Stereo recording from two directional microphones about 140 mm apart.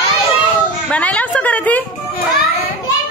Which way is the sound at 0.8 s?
10° left (ahead or behind).